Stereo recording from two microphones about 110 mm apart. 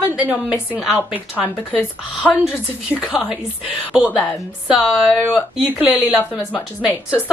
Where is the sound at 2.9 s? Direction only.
5° right (ahead or behind).